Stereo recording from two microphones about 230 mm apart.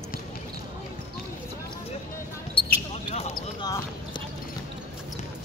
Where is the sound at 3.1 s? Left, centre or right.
Left.